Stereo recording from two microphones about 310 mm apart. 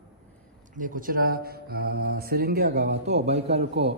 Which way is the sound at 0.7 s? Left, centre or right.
Right.